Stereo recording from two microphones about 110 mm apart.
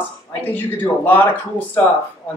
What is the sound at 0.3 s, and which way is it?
Speech, 20° left (ahead or behind).